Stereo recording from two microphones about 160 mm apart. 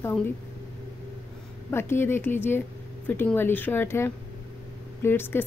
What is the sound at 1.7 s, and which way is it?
Speech, 15° left (ahead or behind).